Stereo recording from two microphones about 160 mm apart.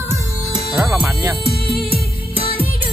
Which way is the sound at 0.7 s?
5° right (ahead or behind).